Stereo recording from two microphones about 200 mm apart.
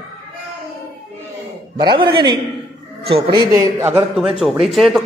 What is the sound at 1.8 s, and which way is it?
Speech, 20° right (ahead or behind).